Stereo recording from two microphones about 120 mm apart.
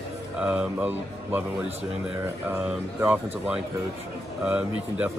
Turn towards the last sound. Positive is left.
turn(degrees=-10)  # may be behind; listen again after turning